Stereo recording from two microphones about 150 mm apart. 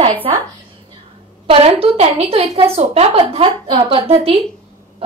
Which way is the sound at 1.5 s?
40° right (ahead or behind).